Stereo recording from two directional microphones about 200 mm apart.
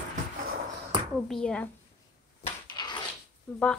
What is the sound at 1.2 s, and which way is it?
Speech, 5° left (ahead or behind).